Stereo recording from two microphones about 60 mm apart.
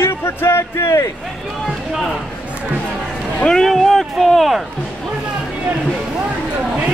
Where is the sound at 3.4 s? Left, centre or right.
Centre.